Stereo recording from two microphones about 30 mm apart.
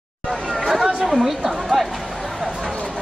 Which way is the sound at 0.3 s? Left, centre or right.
Centre.